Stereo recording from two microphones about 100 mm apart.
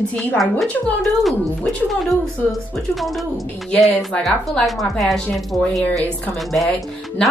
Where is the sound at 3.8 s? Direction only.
10° left (ahead or behind).